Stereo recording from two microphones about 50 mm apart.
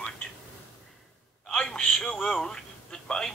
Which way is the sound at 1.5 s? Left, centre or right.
Centre.